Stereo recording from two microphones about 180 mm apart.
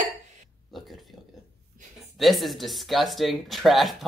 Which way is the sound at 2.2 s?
Centre (ahead or behind).